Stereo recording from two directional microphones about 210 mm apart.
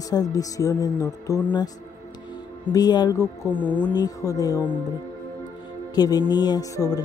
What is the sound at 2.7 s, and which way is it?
Speech, 20° left (ahead or behind).